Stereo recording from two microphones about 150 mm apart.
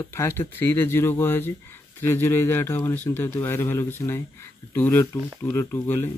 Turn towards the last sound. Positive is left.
turn(degrees=15)  # may be behind; listen again after turning